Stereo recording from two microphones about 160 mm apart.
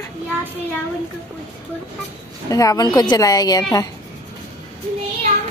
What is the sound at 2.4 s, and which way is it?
A woman's voice, 20° left (ahead or behind).